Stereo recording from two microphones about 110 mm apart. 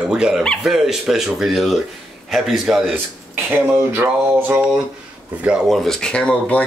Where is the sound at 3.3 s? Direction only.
20° right (ahead or behind).